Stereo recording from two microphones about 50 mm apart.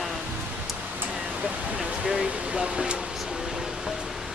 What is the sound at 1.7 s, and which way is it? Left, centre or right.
Speech, centre.